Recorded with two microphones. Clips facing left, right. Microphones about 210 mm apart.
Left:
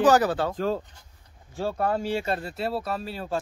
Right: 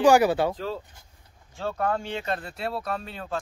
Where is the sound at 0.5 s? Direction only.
50° left (ahead or behind).